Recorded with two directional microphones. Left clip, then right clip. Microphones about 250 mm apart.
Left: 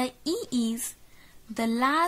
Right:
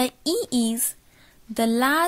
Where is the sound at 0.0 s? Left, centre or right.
Centre.